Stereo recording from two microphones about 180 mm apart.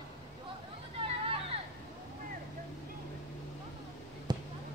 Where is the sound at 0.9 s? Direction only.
30° right (ahead or behind).